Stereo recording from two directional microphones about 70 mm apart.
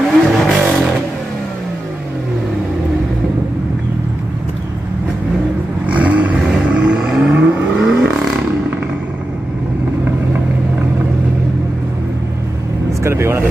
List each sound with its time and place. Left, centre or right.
0.0 s vehicle: centre
5.9 s vehicle: centre
6.4 s vehicle: centre
13.0 s vehicle: right